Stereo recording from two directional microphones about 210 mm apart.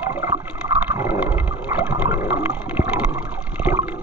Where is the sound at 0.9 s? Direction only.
10° right (ahead or behind).